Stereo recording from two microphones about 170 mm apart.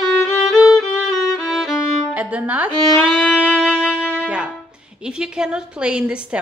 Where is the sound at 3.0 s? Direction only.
5° left (ahead or behind).